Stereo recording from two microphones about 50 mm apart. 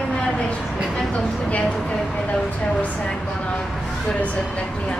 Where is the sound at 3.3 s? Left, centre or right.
Left.